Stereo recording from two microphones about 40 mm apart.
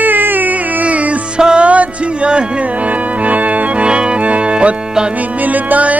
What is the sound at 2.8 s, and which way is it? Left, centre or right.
Organ, right.